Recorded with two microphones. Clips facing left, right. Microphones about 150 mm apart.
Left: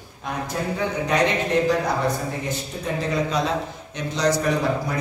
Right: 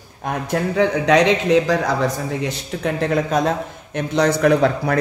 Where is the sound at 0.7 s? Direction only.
90° right.